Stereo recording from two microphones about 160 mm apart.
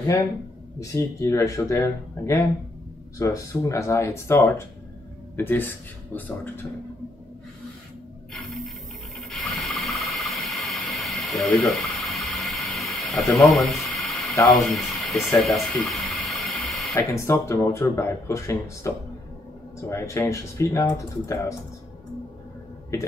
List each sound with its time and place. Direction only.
0.7 s speech: 20° left (ahead or behind)
8.3 s printer: centre (ahead or behind)
9.3 s rub: centre (ahead or behind)
14.5 s a sound: centre (ahead or behind)
16.9 s speech: 20° left (ahead or behind)